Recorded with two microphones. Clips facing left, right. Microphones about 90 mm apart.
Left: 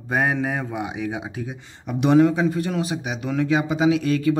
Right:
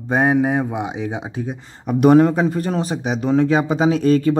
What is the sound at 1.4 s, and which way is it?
A man's voice, 45° right (ahead or behind).